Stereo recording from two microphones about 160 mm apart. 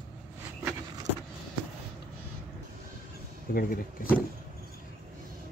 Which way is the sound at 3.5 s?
65° left (ahead or behind).